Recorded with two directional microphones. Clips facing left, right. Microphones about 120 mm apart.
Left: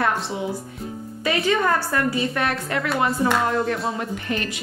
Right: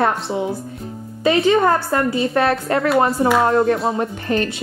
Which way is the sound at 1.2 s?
25° right (ahead or behind).